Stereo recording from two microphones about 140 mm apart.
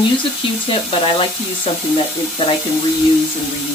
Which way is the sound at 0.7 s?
40° left (ahead or behind).